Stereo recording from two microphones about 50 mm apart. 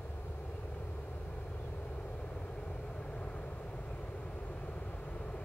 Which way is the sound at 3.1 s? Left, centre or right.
Left.